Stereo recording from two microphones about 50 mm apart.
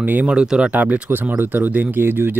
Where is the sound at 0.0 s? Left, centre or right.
Right.